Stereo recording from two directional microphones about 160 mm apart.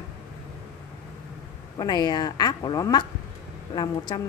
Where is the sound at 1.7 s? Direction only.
25° left (ahead or behind).